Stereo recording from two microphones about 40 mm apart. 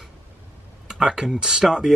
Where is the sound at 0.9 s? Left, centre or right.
Centre.